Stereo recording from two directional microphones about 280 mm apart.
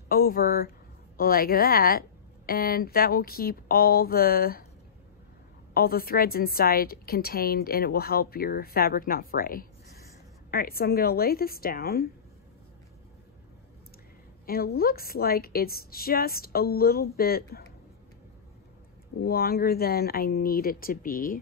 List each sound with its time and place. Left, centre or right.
0.1 s a woman's voice: left
5.8 s a woman's voice: left
14.4 s a woman's voice: left
19.2 s a woman's voice: left